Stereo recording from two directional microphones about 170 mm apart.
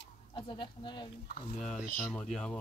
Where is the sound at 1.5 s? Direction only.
Centre (ahead or behind).